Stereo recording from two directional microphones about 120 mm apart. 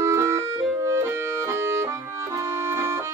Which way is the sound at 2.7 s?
20° right (ahead or behind).